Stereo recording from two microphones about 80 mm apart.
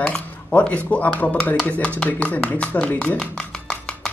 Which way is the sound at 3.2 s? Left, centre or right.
Centre.